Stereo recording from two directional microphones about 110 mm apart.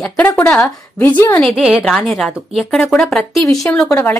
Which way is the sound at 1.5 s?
10° right (ahead or behind).